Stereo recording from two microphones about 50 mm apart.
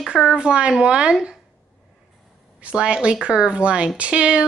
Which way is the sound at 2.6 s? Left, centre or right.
Centre.